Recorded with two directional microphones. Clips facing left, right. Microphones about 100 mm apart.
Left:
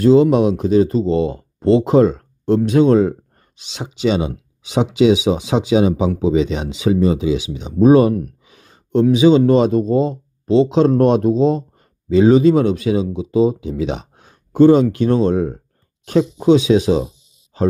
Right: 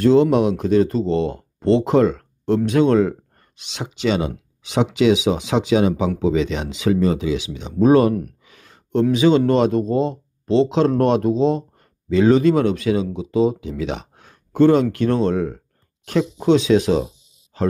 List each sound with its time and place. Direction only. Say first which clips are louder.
0.0 s speech: left 3 dB; 10° left (ahead or behind)
8.5 s a sound: left 5 dB; 20° left (ahead or behind)
9.1 s speech: left 4 dB; 15° left (ahead or behind)